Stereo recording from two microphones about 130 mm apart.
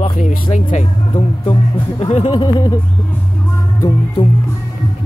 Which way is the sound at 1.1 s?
45° left (ahead or behind).